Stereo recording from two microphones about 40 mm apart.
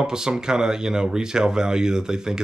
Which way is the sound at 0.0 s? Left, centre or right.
Centre.